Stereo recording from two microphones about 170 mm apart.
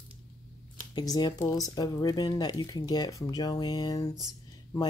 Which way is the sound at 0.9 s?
25° left (ahead or behind).